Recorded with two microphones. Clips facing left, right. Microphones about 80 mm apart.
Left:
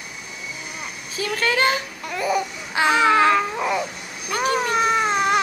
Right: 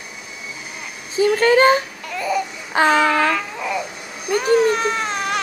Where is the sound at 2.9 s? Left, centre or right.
Left.